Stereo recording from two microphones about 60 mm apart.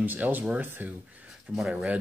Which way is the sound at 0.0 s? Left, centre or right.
Right.